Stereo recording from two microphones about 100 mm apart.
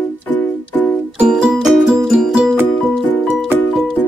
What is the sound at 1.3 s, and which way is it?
Music, 5° right (ahead or behind).